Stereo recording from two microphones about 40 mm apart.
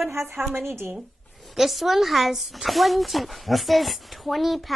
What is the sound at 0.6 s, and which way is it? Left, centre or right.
Speech, right.